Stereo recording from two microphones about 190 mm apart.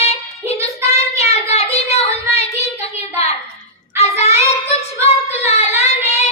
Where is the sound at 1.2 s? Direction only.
35° left (ahead or behind).